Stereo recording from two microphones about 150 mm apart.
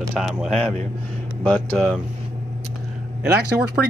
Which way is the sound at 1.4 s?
10° left (ahead or behind).